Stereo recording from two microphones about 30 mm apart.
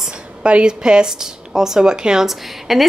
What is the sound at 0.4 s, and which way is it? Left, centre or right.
Speech, right.